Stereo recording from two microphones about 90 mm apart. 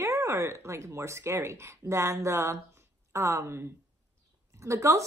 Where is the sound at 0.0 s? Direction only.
35° right (ahead or behind).